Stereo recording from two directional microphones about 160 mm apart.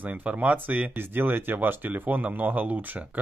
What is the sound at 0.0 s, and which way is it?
Speech, 10° right (ahead or behind).